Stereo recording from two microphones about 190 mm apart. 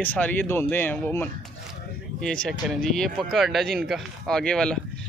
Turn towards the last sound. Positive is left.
turn(degrees=5)  # may be behind; listen again after turning